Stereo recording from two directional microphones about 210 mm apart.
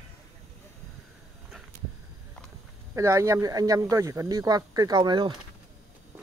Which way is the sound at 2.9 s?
15° right (ahead or behind).